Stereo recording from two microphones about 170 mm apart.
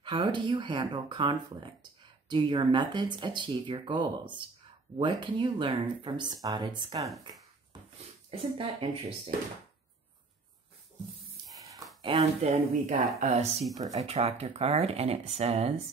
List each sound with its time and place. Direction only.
0.0 s speech: 30° right (ahead or behind)
8.3 s speech: 35° right (ahead or behind)
11.5 s a sound: 20° right (ahead or behind)
12.0 s speech: 35° right (ahead or behind)